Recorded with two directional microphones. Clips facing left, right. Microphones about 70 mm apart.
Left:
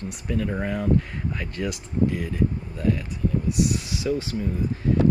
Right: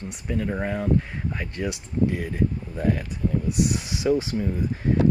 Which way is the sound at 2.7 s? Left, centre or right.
Right.